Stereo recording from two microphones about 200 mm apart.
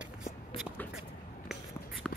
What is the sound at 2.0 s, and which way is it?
Shuffle, centre (ahead or behind).